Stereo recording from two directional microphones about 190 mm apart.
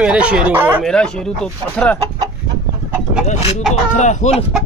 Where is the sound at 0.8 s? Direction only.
5° left (ahead or behind).